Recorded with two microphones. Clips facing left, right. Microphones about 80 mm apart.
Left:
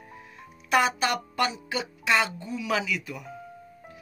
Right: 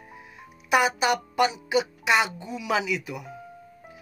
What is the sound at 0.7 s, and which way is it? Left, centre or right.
Speech, centre.